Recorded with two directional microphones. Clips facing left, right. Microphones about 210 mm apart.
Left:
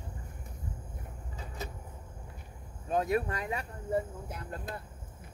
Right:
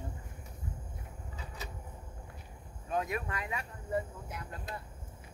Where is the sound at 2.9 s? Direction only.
35° left (ahead or behind).